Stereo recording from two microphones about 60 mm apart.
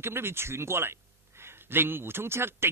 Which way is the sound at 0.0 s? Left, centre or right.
Right.